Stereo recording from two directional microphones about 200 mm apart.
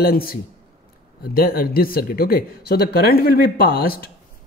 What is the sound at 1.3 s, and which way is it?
Speech, 45° left (ahead or behind).